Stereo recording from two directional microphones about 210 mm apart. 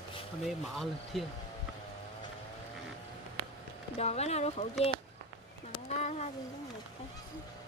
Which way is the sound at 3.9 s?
30° left (ahead or behind).